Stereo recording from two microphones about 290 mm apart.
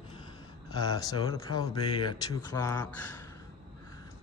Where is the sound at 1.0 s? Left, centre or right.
Centre.